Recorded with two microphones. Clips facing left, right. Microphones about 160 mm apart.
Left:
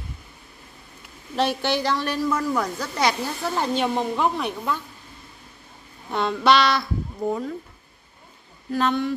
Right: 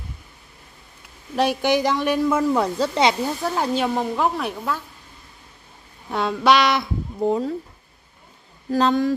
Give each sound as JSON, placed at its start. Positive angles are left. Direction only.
{"t": 1.3, "sound": "a woman's voice", "side_deg": -10}
{"t": 3.5, "sound": "speech", "side_deg": -5}
{"t": 6.0, "sound": "a sound", "side_deg": -5}
{"t": 7.2, "sound": "a woman's voice", "side_deg": -30}
{"t": 8.7, "sound": "speech", "side_deg": -40}